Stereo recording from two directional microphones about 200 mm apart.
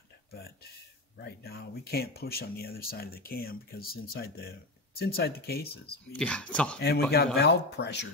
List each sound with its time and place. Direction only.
1.1 s speech: 55° left (ahead or behind)
6.1 s speech: 5° left (ahead or behind)
6.8 s speech: 55° left (ahead or behind)